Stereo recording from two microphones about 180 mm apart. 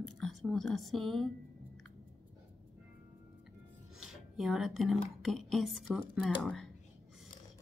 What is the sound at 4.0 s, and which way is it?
Speech, centre (ahead or behind).